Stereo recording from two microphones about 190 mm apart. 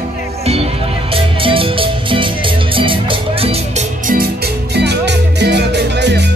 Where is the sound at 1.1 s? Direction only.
30° right (ahead or behind).